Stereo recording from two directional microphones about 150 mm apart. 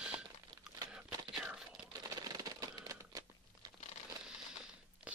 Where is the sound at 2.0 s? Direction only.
25° right (ahead or behind).